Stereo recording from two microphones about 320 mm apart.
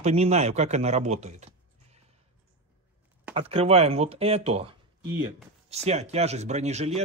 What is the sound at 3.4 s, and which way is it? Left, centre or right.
Speech, centre.